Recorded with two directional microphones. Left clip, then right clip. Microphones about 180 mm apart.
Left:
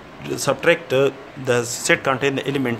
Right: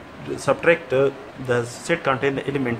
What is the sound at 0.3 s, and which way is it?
Speech, 55° left (ahead or behind).